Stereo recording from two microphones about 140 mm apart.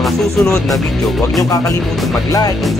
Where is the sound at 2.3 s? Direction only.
25° left (ahead or behind).